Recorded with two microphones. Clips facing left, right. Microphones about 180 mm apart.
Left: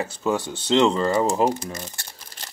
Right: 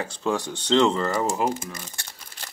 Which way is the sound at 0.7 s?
25° left (ahead or behind).